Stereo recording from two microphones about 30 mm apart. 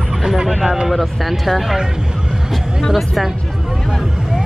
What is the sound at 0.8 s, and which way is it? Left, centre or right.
Speech, centre.